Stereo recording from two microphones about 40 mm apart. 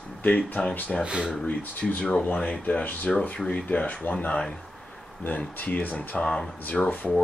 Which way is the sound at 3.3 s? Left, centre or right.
Left.